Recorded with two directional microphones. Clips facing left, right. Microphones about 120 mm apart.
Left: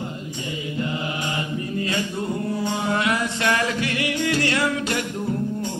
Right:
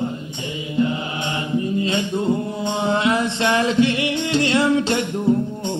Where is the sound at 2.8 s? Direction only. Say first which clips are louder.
Right 6 dB; 25° right (ahead or behind).